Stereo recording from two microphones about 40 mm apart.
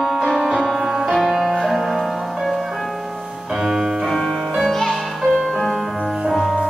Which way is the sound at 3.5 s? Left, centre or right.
Centre.